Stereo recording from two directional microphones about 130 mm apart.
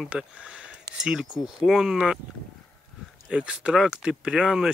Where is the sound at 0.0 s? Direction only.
10° right (ahead or behind).